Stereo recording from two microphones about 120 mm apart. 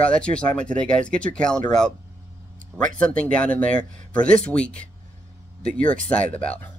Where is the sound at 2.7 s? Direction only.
10° left (ahead or behind).